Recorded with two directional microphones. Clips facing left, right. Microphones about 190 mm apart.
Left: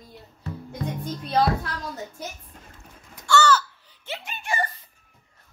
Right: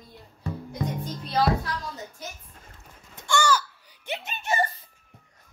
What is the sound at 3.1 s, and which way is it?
Crow, 15° right (ahead or behind).